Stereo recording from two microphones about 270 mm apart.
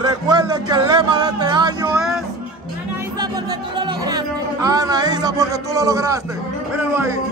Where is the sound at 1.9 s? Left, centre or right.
Centre.